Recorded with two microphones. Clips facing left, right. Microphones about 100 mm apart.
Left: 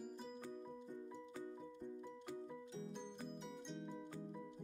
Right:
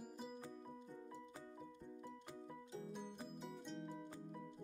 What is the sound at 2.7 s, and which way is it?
Music, 5° right (ahead or behind).